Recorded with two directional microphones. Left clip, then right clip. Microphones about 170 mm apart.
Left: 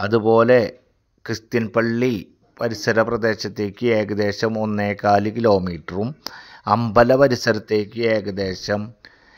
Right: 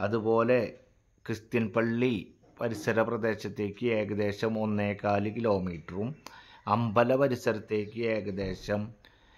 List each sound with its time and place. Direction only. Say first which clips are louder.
0.0 s speech: left 11 dB; 40° left (ahead or behind)
1.2 s a man's voice: left 8 dB; 25° left (ahead or behind)